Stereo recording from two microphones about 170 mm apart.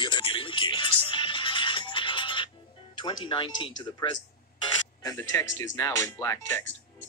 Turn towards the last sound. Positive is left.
turn(degrees=15)  # may be behind; listen again after turning